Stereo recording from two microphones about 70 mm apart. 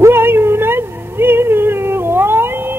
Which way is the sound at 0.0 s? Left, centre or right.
Right.